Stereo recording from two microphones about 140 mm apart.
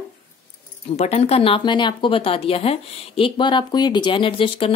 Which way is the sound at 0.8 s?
50° left (ahead or behind).